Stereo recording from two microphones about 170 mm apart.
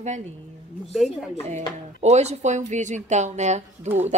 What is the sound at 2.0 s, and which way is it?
A woman's voice, 40° right (ahead or behind).